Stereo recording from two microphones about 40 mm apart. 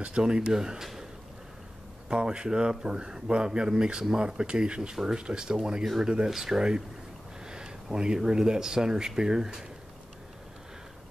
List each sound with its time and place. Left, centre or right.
0.2 s speech: centre
2.0 s speech: right